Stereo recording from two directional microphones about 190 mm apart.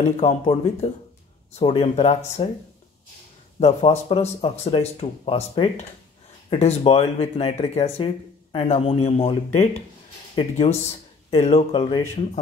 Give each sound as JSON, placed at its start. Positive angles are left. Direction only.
{"t": 0.2, "sound": "speech", "side_deg": 35}
{"t": 3.5, "sound": "speech", "side_deg": 35}